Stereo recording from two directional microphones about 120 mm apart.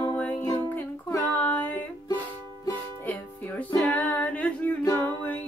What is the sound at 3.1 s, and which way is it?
Music, 10° left (ahead or behind).